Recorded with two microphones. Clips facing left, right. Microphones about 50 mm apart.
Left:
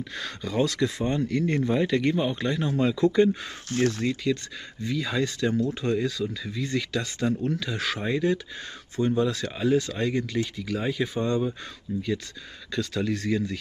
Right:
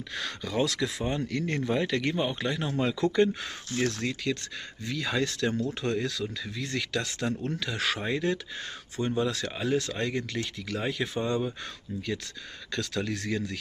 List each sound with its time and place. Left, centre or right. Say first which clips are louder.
0.1 s speech: right 1 dB; centre
3.7 s speech: left 4 dB; left
4.8 s speech: left 2 dB; centre
9.0 s speech: left 4 dB; centre
9.3 s speech: left 4 dB; centre
11.2 s speech: left 3 dB; centre
11.9 s speech: left 5 dB; centre